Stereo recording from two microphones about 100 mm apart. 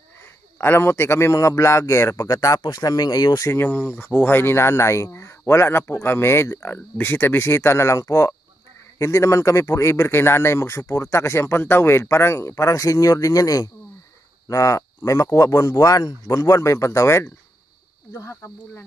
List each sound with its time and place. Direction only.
0.6 s speech: 25° left (ahead or behind)